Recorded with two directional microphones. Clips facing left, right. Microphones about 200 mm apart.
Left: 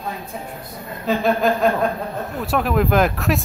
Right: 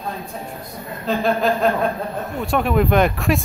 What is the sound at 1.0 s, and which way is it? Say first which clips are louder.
Speech: left 1 dB; centre (ahead or behind).